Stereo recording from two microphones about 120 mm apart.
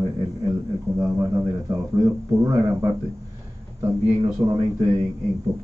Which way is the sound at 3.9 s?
30° right (ahead or behind).